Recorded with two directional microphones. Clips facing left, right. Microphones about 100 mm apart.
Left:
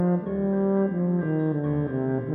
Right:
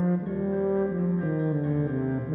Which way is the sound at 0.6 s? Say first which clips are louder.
Left 1 dB; 25° left (ahead or behind).